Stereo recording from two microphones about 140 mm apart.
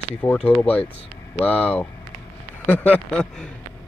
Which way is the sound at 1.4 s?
10° left (ahead or behind).